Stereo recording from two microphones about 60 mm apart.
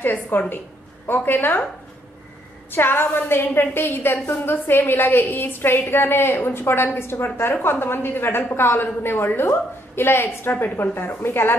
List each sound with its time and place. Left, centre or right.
0.0 s a woman's voice: left
2.7 s a woman's voice: left